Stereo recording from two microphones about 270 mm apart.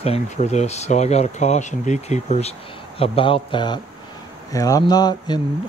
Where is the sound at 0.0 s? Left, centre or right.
Left.